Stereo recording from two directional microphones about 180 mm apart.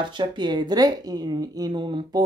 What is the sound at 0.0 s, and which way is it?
Speech, 25° right (ahead or behind).